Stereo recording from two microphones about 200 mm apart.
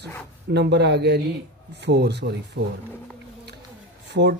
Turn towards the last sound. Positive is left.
turn(degrees=-60)  # may be behind; listen again after turning